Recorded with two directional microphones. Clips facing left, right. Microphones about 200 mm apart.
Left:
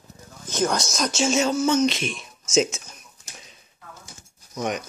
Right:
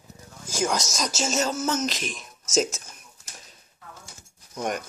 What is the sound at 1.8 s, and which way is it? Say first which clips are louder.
Speech: left 6 dB; 40° right (ahead or behind).